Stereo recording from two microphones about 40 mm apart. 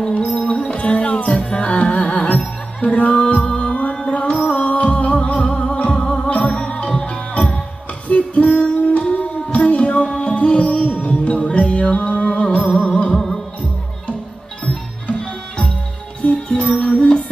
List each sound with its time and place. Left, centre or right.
0.0 s music: left
6.9 s music: centre
8.1 s music: left
12.3 s music: left
15.1 s music: left